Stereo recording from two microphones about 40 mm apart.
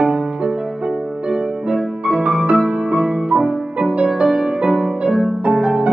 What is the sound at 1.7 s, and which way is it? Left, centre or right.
Music, right.